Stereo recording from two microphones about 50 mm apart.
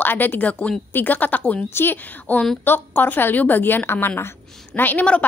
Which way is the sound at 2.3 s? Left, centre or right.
Left.